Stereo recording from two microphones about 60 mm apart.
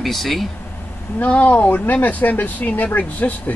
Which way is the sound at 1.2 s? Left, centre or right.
Left.